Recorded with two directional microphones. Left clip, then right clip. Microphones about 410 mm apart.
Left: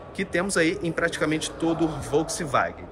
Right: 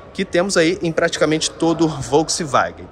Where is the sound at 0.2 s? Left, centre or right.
Centre.